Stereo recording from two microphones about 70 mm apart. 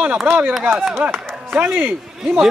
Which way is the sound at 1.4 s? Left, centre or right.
Right.